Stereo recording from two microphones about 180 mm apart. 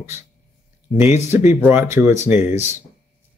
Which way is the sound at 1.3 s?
15° right (ahead or behind).